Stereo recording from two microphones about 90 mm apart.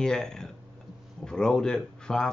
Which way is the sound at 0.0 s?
10° left (ahead or behind).